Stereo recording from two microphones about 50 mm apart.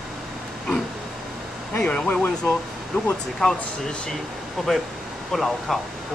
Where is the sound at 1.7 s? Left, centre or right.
Left.